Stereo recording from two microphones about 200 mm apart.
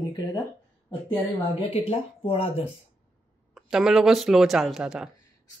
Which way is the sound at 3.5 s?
Centre (ahead or behind).